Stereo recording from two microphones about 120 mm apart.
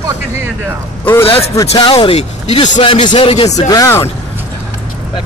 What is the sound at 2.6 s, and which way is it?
Speech, 45° left (ahead or behind).